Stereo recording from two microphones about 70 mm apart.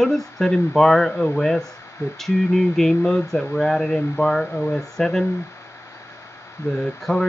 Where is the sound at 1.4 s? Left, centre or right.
Centre.